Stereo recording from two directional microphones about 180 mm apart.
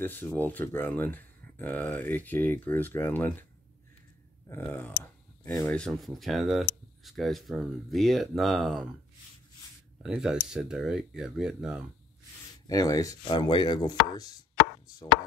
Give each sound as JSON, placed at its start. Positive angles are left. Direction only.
{"t": 0.0, "sound": "speech", "side_deg": 10}
{"t": 4.5, "sound": "speech", "side_deg": 10}
{"t": 10.0, "sound": "speech", "side_deg": 0}
{"t": 12.6, "sound": "chopping", "side_deg": 20}